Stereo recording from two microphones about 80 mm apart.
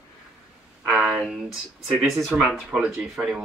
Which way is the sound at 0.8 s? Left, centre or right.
Centre.